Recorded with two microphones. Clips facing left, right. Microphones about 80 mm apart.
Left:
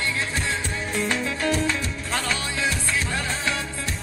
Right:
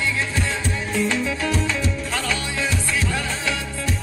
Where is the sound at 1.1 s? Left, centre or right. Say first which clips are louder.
Right 1 dB; left.